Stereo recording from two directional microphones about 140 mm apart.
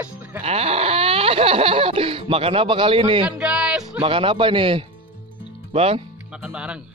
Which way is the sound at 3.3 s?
10° right (ahead or behind).